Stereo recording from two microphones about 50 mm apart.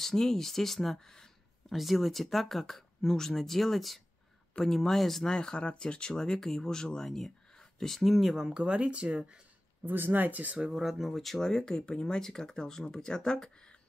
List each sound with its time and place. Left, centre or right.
0.0 s speech: centre
1.8 s speech: centre
5.3 s speech: centre
8.5 s speech: right
9.8 s speech: right
10.7 s speech: centre